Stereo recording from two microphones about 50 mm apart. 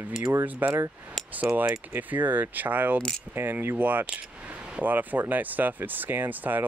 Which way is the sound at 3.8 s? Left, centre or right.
Right.